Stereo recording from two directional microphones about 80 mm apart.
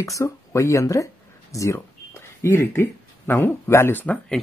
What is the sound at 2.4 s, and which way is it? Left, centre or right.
Speech, left.